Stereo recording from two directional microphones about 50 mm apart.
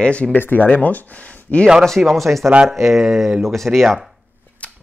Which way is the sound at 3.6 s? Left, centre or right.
Centre.